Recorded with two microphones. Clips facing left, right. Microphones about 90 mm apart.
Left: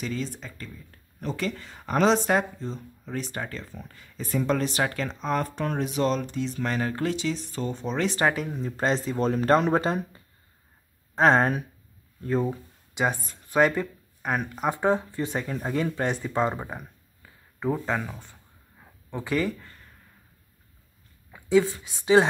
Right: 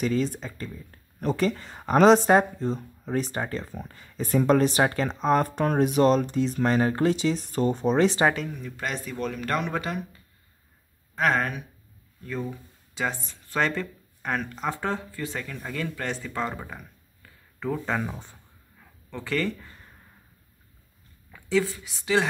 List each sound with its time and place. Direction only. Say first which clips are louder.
0.0 s speech: right 6 dB; 50° right (ahead or behind)
1.2 s speech: right 5 dB; 40° right (ahead or behind)
3.3 s speech: right 4 dB; 30° right (ahead or behind)
7.2 s speech: right 4 dB; 45° right (ahead or behind)
8.5 s speech: left 6 dB; 30° left (ahead or behind)
11.1 s speech: left 5 dB; 30° left (ahead or behind)
12.9 s speech: left 3 dB; 20° left (ahead or behind)
17.2 s a sound: left 2 dB; 10° left (ahead or behind)
17.8 s speech: even; centre (ahead or behind)
18.1 s speech: right 3 dB; 15° right (ahead or behind)
18.8 s a sound: left 3 dB; 15° left (ahead or behind)
21.3 s a sound: left 4 dB; 20° left (ahead or behind)
21.8 s speech: left 5 dB; 20° left (ahead or behind)